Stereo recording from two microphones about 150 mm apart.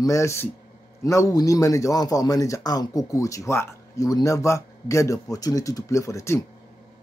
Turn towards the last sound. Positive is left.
turn(degrees=20)  # may be behind; listen again after turning